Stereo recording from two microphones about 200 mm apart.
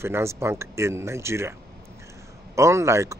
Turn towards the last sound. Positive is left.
turn(degrees=-15)  # may be behind; listen again after turning